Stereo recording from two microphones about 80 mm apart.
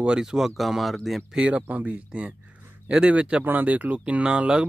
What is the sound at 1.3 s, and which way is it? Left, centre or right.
Speech, centre.